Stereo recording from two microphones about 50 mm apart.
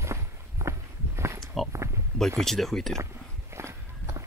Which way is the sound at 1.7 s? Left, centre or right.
Right.